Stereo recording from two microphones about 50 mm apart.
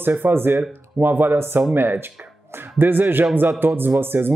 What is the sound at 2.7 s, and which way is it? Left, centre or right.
A man's voice, right.